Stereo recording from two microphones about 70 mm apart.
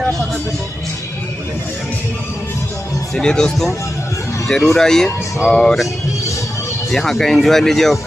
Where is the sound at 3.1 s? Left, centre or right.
Centre.